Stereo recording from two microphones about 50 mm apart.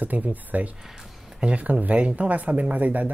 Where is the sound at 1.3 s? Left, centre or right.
Right.